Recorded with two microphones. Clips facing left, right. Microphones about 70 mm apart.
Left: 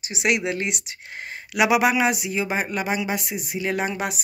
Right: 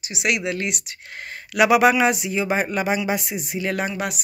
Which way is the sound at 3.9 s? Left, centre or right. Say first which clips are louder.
Even; left.